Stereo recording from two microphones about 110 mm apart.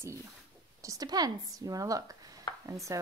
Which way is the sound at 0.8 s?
35° right (ahead or behind).